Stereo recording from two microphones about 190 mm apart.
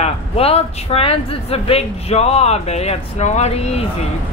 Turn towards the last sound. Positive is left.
turn(degrees=35)  # may be behind; listen again after turning